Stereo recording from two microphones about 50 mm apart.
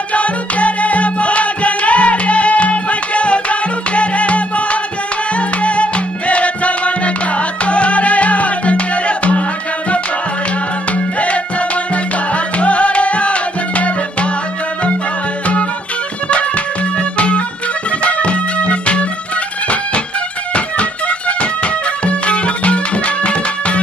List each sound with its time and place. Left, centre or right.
0.1 s music: left
10.9 s music: left
16.3 s music: left
20.5 s music: left